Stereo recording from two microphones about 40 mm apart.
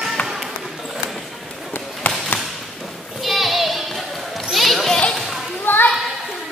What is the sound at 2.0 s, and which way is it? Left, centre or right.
Basketball bounce, left.